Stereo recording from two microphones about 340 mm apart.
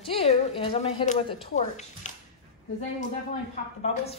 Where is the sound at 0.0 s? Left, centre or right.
Centre.